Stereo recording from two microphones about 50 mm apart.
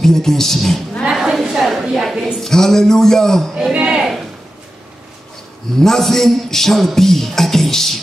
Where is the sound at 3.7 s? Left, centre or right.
Right.